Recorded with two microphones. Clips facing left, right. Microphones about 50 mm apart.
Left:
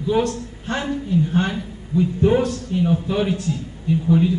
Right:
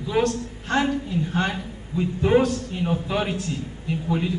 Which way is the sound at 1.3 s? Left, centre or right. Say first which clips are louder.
Left 3 dB; right.